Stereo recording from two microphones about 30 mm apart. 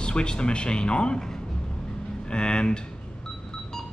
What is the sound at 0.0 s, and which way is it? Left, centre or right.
Speech, left.